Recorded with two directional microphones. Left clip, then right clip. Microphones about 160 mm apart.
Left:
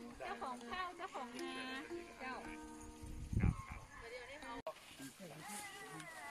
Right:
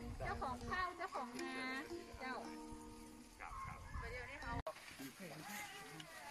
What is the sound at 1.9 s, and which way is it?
Music, 25° right (ahead or behind).